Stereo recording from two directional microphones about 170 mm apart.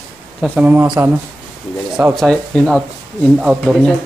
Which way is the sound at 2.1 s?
5° left (ahead or behind).